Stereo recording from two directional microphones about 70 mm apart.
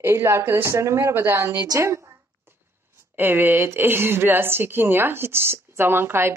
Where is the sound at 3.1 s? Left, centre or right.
Right.